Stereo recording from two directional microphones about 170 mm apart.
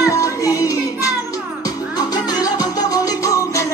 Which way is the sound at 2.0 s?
25° left (ahead or behind).